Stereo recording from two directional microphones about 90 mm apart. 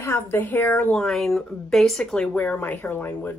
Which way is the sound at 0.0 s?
25° left (ahead or behind).